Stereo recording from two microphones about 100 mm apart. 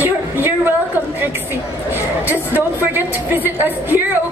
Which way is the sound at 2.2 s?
20° right (ahead or behind).